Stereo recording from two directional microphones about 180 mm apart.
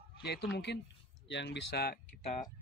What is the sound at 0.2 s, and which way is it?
Speech, 65° left (ahead or behind).